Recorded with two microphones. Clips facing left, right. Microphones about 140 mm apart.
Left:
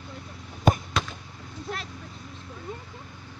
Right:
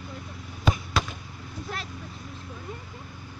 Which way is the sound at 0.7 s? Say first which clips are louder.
Left 4 dB; 50° left (ahead or behind).